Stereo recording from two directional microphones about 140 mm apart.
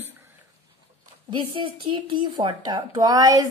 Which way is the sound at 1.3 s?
35° right (ahead or behind).